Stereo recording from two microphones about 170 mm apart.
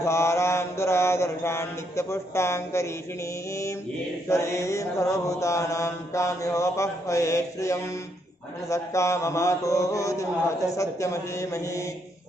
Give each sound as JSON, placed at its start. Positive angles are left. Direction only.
{"t": 0.0, "sound": "mantra", "side_deg": 15}
{"t": 4.3, "sound": "mantra", "side_deg": 15}